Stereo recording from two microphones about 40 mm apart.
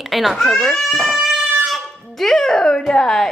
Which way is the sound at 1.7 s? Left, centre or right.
Centre.